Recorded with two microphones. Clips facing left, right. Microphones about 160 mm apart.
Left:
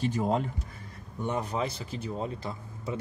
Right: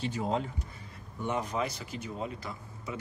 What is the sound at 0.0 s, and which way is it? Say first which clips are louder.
Speech: left 4 dB; 45° left (ahead or behind).